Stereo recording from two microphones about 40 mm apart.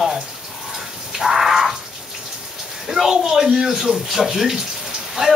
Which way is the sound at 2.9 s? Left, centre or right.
Centre.